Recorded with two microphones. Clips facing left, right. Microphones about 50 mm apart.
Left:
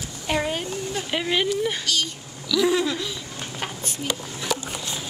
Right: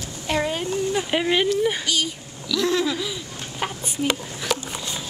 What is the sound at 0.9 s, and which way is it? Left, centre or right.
A woman's voice, centre.